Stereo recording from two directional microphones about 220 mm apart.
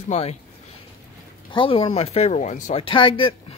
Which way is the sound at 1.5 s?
25° left (ahead or behind).